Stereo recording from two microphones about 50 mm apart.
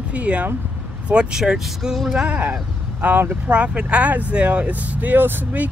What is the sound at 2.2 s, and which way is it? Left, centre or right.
Speech, right.